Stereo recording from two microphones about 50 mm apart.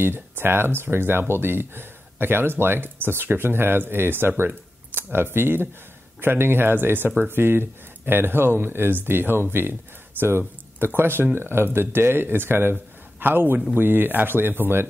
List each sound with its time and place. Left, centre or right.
0.0 s speech: right